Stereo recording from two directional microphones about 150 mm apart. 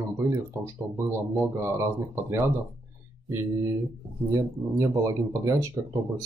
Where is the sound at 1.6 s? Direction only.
20° right (ahead or behind).